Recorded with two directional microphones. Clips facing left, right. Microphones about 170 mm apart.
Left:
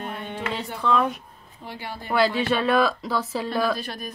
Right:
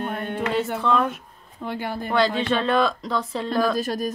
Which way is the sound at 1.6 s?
55° right (ahead or behind).